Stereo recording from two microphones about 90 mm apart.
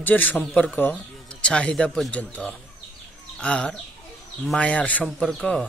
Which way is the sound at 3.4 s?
10° left (ahead or behind).